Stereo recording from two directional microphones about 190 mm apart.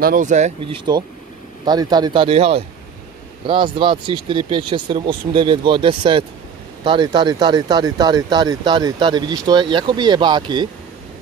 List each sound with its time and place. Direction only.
0.0 s speech: 45° right (ahead or behind)
1.7 s speech: 20° right (ahead or behind)